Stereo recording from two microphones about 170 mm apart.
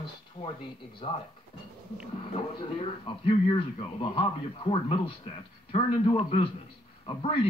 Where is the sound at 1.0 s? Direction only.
30° left (ahead or behind).